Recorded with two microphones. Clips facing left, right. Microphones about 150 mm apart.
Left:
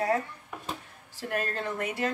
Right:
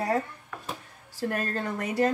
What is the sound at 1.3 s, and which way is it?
Speech, 40° right (ahead or behind).